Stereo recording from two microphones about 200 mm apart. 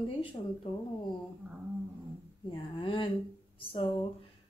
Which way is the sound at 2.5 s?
25° left (ahead or behind).